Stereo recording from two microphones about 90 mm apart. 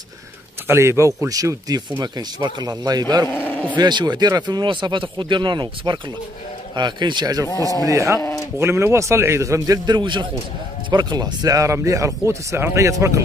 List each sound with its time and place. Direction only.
0.7 s speech: 30° right (ahead or behind); by 3.3 s 50° right (ahead or behind)
3.3 s speech: 30° left (ahead or behind)
3.7 s speech: 55° right (ahead or behind)
7.9 s speech: 35° right (ahead or behind)
9.8 s speech: 60° right (ahead or behind); by 13.2 s 35° right (ahead or behind)